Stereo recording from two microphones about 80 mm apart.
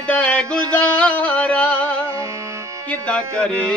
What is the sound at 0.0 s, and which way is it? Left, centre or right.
Music, centre.